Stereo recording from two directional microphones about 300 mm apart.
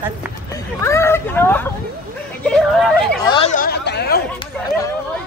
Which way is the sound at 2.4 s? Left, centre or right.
Centre.